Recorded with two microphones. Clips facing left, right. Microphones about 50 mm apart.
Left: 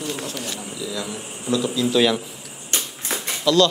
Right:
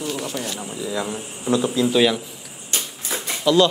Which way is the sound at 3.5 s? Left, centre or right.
Centre.